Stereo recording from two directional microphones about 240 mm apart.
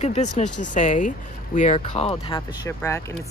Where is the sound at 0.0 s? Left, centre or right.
Left.